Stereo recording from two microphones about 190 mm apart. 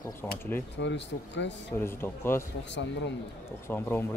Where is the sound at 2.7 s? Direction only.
70° left (ahead or behind).